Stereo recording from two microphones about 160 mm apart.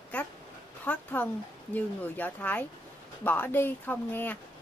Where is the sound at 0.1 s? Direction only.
10° left (ahead or behind).